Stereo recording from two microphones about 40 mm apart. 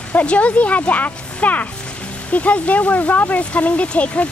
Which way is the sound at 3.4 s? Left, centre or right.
Left.